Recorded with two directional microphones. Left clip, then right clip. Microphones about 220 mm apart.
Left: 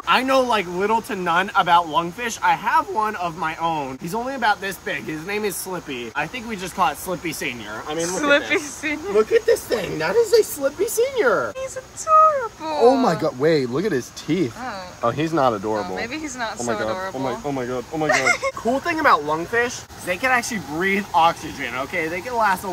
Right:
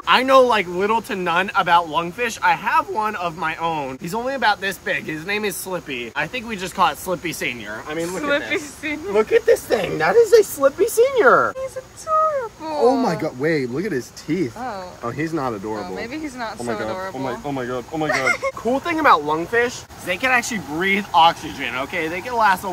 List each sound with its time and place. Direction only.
0.0 s speech: 5° left (ahead or behind)
7.9 s speech: 15° left (ahead or behind); by 10.1 s centre (ahead or behind)
11.0 s speech: 40° right (ahead or behind)
12.3 s speech: 5° left (ahead or behind)
13.0 s speech: 15° left (ahead or behind)
15.8 s speech: centre (ahead or behind)